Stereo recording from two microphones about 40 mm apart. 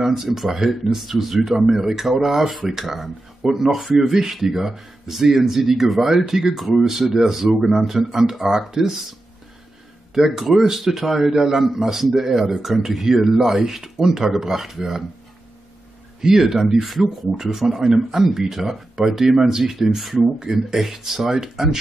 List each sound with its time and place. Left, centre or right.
0.0 s speech: centre
10.1 s speech: centre
16.2 s speech: centre